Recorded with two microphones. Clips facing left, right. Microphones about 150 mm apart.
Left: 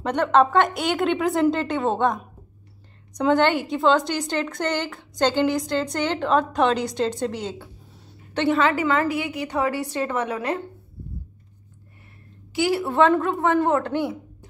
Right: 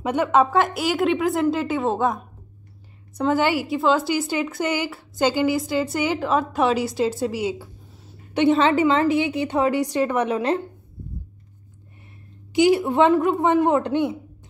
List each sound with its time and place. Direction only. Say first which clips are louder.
0.0 s a woman's voice: even; 10° right (ahead or behind)
3.2 s a woman's voice: left 1 dB; 5° right (ahead or behind)
8.4 s a woman's voice: right 3 dB; 25° right (ahead or behind)
12.5 s a man's voice: right 3 dB; 20° right (ahead or behind)